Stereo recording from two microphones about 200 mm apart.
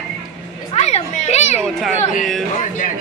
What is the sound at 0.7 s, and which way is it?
Speech, 35° left (ahead or behind).